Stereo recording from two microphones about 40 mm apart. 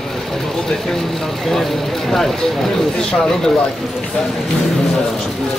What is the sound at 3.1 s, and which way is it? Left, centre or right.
Speech, centre.